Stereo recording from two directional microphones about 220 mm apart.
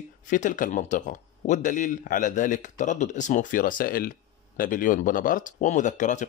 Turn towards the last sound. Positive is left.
turn(degrees=35)  # may be behind; listen again after turning